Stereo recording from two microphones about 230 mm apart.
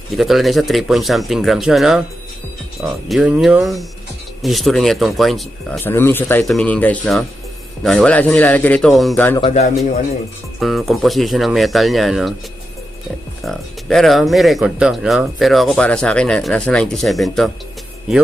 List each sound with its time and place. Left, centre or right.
0.2 s speech: centre
9.4 s speech: left
10.6 s speech: centre
13.5 s speech: centre